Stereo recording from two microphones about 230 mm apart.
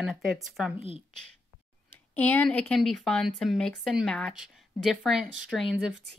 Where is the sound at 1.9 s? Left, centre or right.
Centre.